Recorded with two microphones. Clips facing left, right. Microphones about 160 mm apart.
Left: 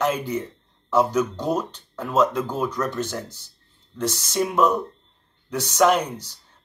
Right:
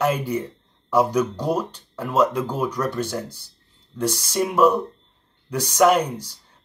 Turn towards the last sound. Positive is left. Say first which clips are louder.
# right 2 dB
turn(degrees=-10)  # may be behind; listen again after turning